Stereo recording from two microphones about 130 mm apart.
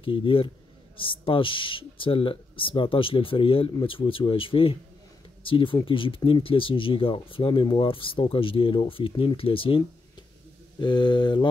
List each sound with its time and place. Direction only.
0.0 s speech: 40° left (ahead or behind)